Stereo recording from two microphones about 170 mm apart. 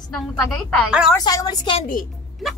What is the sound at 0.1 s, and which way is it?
Speech, 5° left (ahead or behind).